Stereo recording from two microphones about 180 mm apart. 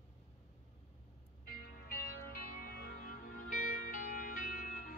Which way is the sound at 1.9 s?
55° left (ahead or behind).